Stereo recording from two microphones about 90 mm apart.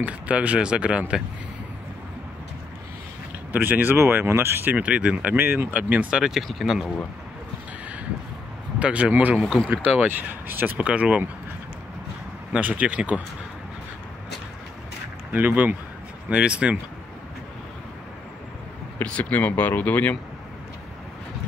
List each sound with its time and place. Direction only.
0.0 s speech: 15° right (ahead or behind)
3.5 s speech: 20° right (ahead or behind)
4.7 s speech: 15° right (ahead or behind)
8.7 s speech: 15° right (ahead or behind)
12.5 s speech: 15° right (ahead or behind)
15.3 s speech: 20° right (ahead or behind)
18.9 s speech: 15° left (ahead or behind)